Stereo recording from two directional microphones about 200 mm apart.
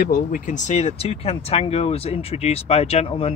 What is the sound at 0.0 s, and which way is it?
Speech, 45° left (ahead or behind).